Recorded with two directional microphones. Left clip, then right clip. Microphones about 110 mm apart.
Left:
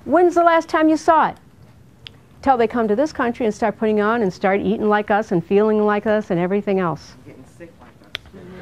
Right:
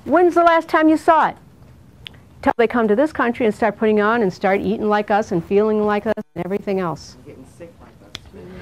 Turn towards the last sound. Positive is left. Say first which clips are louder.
# left 2 dB
turn(degrees=15)  # may be behind; listen again after turning